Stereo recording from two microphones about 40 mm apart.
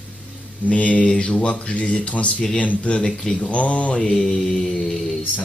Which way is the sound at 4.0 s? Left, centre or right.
Centre.